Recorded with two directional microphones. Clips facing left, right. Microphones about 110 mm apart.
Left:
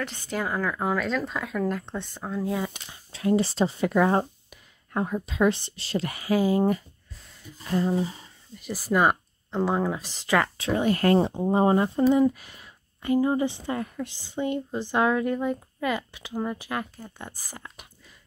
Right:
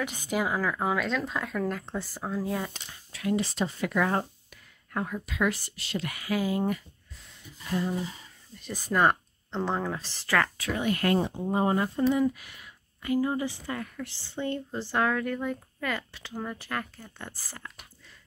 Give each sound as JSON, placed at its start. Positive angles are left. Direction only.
{"t": 0.0, "sound": "speech", "side_deg": -10}
{"t": 3.1, "sound": "speech", "side_deg": 30}
{"t": 7.5, "sound": "a sound", "side_deg": 35}
{"t": 8.5, "sound": "a woman's voice", "side_deg": 5}